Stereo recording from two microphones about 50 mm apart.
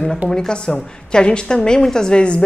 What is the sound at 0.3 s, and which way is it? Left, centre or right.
A woman's voice, centre.